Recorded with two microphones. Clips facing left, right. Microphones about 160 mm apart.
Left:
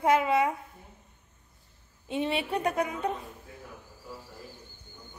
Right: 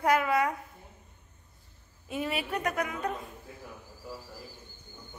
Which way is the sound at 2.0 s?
25° left (ahead or behind).